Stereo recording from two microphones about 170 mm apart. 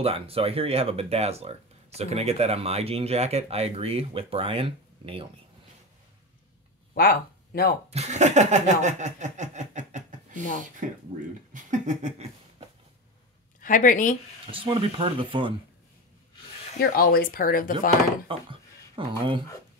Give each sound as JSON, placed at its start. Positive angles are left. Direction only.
{"t": 0.0, "sound": "speech", "side_deg": -35}
{"t": 7.0, "sound": "speech", "side_deg": 60}
{"t": 7.9, "sound": "a sound", "side_deg": -40}
{"t": 11.5, "sound": "a sound", "side_deg": -45}
{"t": 13.6, "sound": "speech", "side_deg": 50}
{"t": 14.5, "sound": "speech", "side_deg": -30}
{"t": 16.9, "sound": "speech", "side_deg": 60}
{"t": 18.3, "sound": "speech", "side_deg": -30}